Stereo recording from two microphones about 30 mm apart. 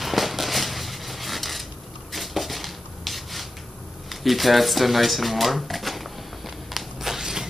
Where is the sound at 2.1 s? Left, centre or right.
Centre.